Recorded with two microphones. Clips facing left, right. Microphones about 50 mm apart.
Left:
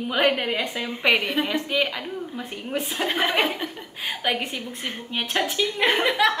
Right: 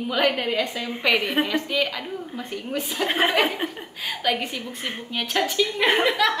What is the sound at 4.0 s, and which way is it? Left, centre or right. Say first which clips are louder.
A woman's voice: right 1 dB; centre.